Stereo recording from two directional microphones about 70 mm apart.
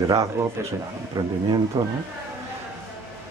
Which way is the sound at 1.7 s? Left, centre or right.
Right.